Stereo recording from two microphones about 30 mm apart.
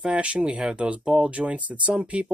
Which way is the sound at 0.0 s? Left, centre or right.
Right.